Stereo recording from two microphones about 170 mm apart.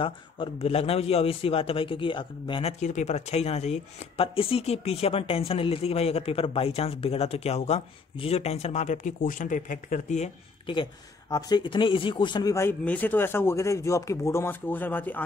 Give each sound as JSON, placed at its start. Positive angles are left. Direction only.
{"t": 0.0, "sound": "speech", "side_deg": 35}
{"t": 2.8, "sound": "speech", "side_deg": 45}
{"t": 10.7, "sound": "speech", "side_deg": 25}